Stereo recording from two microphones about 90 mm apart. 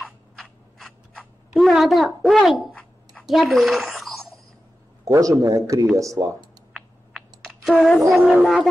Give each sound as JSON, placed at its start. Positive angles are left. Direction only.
{"t": 0.4, "sound": "scissors", "side_deg": 5}
{"t": 2.7, "sound": "a sound", "side_deg": 15}
{"t": 3.3, "sound": "a child's voice", "side_deg": 0}
{"t": 5.0, "sound": "a man's voice", "side_deg": -35}
{"t": 6.7, "sound": "clicking", "side_deg": 0}
{"t": 8.1, "sound": "speech", "side_deg": 0}